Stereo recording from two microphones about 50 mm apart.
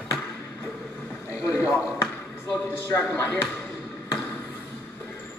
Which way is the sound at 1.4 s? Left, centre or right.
Left.